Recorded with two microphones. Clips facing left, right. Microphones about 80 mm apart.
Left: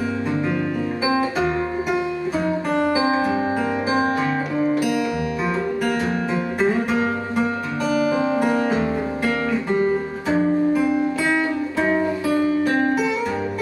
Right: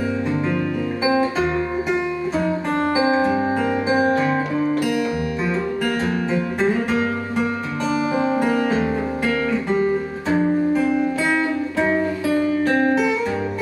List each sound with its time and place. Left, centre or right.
2.7 s music: right
5.9 s music: left
7.9 s music: right
8.5 s music: left
10.8 s music: centre